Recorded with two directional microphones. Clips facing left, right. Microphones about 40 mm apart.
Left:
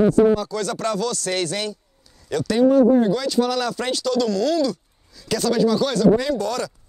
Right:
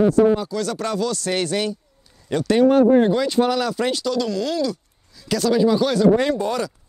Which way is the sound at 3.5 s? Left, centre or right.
Centre.